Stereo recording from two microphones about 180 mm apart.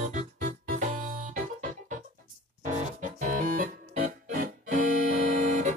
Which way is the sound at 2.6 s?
45° right (ahead or behind).